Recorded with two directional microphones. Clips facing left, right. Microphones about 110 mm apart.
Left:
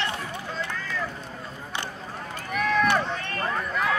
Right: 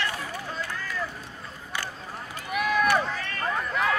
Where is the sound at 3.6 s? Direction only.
Centre (ahead or behind).